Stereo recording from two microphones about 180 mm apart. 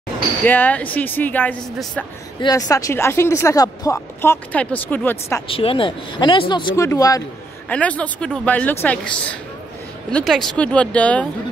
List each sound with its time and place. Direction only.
0.5 s speech: 10° left (ahead or behind)
2.4 s speech: 20° left (ahead or behind)
5.5 s speech: 30° left (ahead or behind)
7.6 s speech: 5° left (ahead or behind)